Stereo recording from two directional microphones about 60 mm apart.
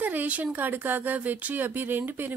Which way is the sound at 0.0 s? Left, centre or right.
Right.